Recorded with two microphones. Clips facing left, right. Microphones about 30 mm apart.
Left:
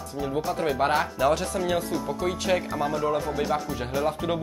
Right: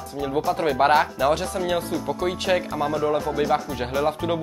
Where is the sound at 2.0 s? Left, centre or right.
Right; by 4.4 s centre.